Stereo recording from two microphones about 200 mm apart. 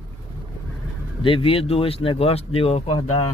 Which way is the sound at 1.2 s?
25° left (ahead or behind).